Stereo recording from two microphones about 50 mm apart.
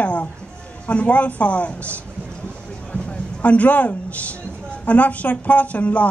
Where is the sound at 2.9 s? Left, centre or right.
Left.